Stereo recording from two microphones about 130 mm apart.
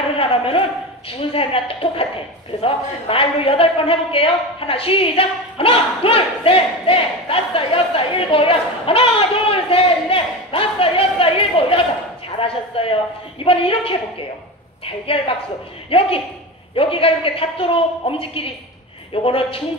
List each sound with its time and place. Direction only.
0.2 s a sound: 45° left (ahead or behind)
1.3 s a woman's voice: 45° left (ahead or behind)
15.9 s a woman's voice: 45° left (ahead or behind)